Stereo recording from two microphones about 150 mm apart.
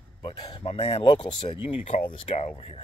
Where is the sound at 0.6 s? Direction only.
45° left (ahead or behind).